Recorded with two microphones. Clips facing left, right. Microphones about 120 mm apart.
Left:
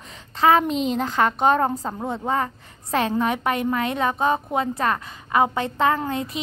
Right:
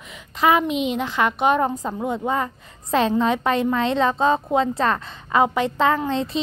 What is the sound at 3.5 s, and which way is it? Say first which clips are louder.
A woman's voice: right 3 dB; 25° right (ahead or behind).